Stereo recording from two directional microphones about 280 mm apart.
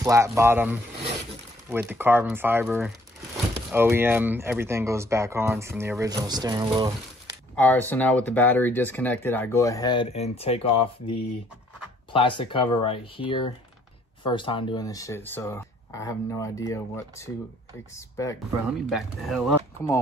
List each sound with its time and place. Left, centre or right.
0.0 s speech: centre
7.5 s speech: centre
18.9 s speech: centre